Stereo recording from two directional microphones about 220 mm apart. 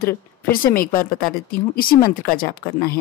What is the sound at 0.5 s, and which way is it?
Speech, 40° left (ahead or behind).